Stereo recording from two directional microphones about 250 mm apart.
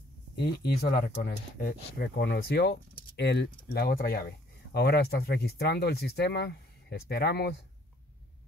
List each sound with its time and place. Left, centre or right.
0.4 s speech: left